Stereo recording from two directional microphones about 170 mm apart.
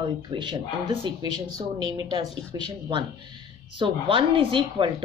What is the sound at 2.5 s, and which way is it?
A woman's voice, 25° right (ahead or behind).